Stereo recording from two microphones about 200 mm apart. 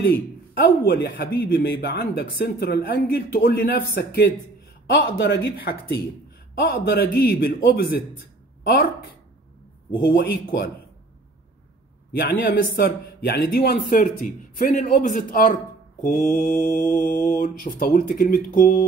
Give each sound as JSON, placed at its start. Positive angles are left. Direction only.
{"t": 0.6, "sound": "speech", "side_deg": 55}
{"t": 12.2, "sound": "speech", "side_deg": 50}